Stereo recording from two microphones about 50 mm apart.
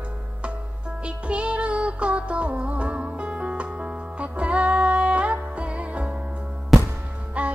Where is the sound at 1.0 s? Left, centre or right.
Right.